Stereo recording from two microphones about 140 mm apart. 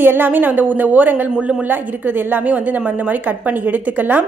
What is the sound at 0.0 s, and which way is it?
A woman's voice, 15° right (ahead or behind).